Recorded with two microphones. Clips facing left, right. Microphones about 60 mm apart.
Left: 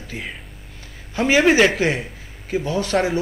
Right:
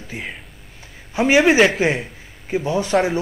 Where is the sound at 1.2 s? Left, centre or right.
Centre.